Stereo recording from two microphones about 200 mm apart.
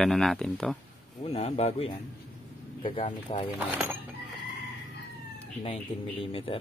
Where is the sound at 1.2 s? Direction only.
30° left (ahead or behind).